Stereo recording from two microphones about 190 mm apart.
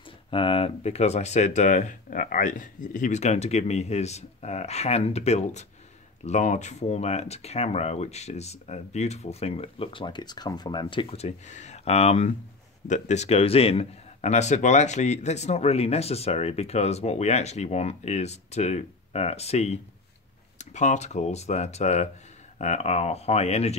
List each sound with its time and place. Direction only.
0.3 s a man's voice: 30° left (ahead or behind)